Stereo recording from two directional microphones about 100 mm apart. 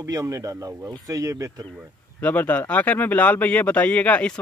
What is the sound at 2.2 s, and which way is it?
Speech, 15° left (ahead or behind).